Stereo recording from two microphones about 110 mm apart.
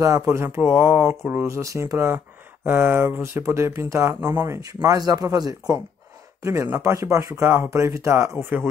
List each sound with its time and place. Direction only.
0.0 s speech: 25° right (ahead or behind)
6.4 s speech: 25° right (ahead or behind)